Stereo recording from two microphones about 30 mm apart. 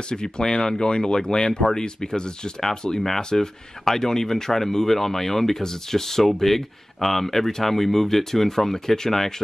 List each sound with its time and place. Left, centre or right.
0.1 s speech: left